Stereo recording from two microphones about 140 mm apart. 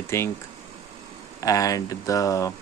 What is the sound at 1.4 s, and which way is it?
Speech, 25° left (ahead or behind).